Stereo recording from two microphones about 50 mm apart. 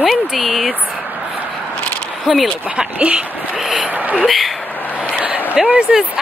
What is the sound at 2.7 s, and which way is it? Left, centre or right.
Speech, right.